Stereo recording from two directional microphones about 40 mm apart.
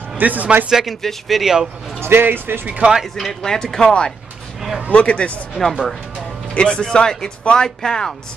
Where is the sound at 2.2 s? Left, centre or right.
Right.